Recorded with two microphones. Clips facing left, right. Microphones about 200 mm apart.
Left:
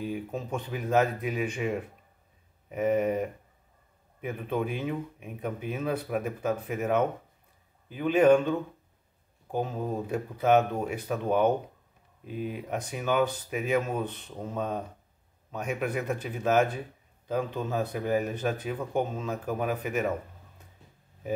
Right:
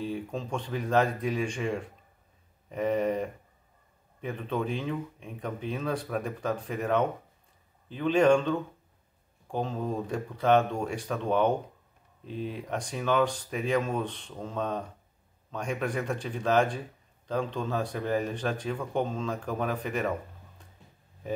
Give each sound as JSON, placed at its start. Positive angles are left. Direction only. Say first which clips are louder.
{"t": 0.0, "sound": "speech", "louder": "even", "side_deg": 10}